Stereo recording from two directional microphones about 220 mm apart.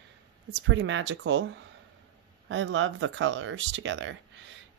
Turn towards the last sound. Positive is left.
turn(degrees=-55)  # may be behind; listen again after turning